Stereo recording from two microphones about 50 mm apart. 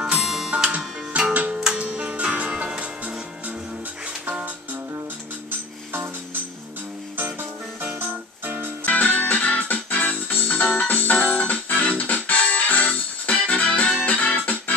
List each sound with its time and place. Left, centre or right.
0.2 s music: centre
0.7 s music: right
7.2 s music: right
8.8 s music: left